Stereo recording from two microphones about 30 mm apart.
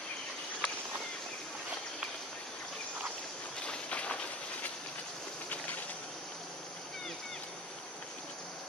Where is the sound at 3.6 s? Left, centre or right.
Left.